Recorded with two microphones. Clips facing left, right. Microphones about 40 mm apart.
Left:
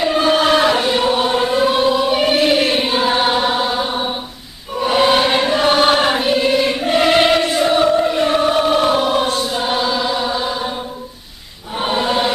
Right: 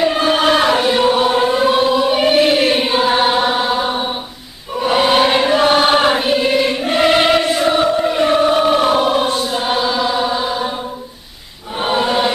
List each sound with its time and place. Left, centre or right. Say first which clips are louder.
0.0 s choir: even; centre
11.8 s choir: right 2 dB; centre